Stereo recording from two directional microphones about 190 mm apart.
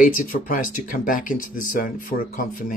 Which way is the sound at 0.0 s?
45° left (ahead or behind).